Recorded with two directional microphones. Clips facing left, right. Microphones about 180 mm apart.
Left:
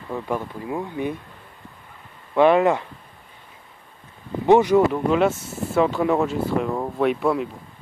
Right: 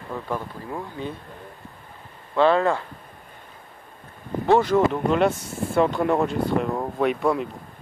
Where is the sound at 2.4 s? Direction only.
15° left (ahead or behind).